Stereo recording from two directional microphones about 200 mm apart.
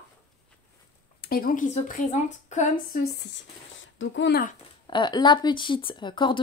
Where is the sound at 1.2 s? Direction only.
45° left (ahead or behind).